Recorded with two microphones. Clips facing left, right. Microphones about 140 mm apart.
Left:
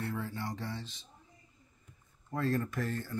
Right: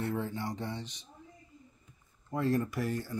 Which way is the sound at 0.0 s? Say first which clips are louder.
Right 3 dB; 20° right (ahead or behind).